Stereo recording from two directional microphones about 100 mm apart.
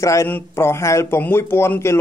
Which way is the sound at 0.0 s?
30° left (ahead or behind).